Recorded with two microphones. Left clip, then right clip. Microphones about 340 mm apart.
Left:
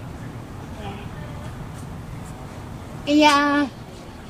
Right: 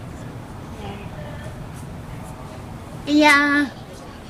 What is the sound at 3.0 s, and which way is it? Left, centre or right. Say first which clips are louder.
Speech: right 1 dB; centre.